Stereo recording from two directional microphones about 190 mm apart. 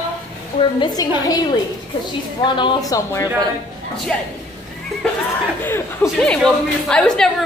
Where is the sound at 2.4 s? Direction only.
25° left (ahead or behind).